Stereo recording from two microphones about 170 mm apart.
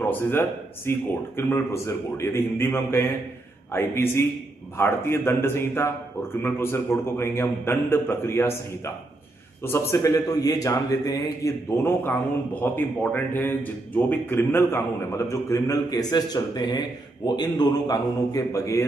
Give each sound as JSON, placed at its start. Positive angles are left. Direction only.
{"t": 0.0, "sound": "a man's voice", "side_deg": 15}